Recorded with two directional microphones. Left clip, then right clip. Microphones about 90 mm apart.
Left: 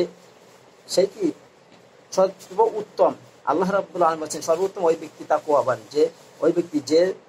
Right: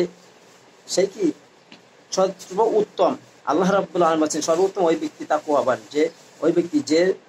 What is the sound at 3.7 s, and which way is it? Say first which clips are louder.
Speech: right 1 dB; 25° right (ahead or behind).